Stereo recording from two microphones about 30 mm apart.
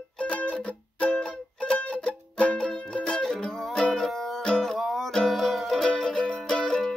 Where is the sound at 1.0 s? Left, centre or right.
Left.